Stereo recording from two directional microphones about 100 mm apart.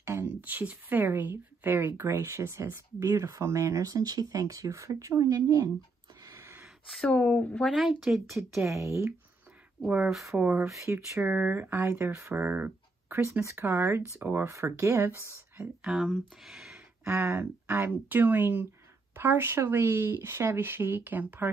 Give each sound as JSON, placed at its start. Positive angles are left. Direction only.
{"t": 0.0, "sound": "speech", "side_deg": -25}
{"t": 6.2, "sound": "gasp", "side_deg": -30}
{"t": 6.9, "sound": "speech", "side_deg": 5}
{"t": 8.0, "sound": "speech", "side_deg": -5}
{"t": 8.5, "sound": "speech", "side_deg": -30}
{"t": 10.4, "sound": "speech", "side_deg": -15}
{"t": 10.7, "sound": "speech", "side_deg": -30}
{"t": 11.2, "sound": "speech", "side_deg": -15}
{"t": 13.2, "sound": "speech", "side_deg": -30}
{"t": 15.8, "sound": "speech", "side_deg": 0}
{"t": 17.0, "sound": "speech", "side_deg": -25}